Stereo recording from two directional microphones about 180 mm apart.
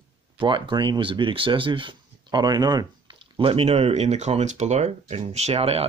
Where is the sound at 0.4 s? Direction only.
25° right (ahead or behind).